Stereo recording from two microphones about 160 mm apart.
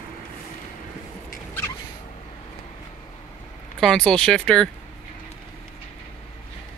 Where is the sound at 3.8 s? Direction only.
Centre (ahead or behind).